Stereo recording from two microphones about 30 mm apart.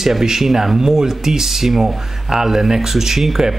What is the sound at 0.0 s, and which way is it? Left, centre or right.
Speech, centre.